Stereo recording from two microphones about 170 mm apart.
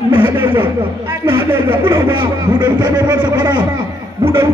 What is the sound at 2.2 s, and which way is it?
A man's voice, 25° right (ahead or behind).